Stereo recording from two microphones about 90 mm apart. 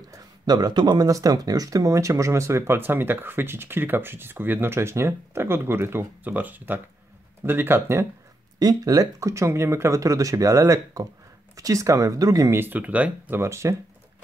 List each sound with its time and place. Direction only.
0.1 s speech: 50° right (ahead or behind); by 8.1 s 25° right (ahead or behind)
8.5 s speech: 45° right (ahead or behind)
12.5 s speech: 20° right (ahead or behind)
13.4 s speech: 30° right (ahead or behind)